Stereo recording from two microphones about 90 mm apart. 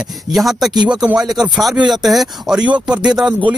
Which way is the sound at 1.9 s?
Centre (ahead or behind).